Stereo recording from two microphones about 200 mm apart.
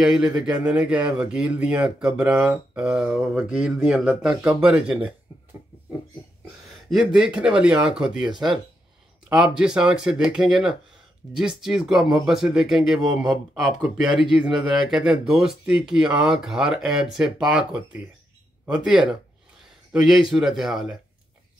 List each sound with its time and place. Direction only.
0.0 s speech: 5° right (ahead or behind)
6.9 s speech: 5° right (ahead or behind)
8.3 s speech: 20° right (ahead or behind)
9.6 s speech: 5° right (ahead or behind)